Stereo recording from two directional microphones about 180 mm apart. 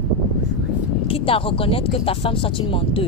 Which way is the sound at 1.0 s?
30° left (ahead or behind).